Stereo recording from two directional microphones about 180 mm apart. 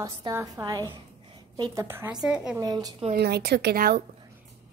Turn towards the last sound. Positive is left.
turn(degrees=-60)  # may be behind; listen again after turning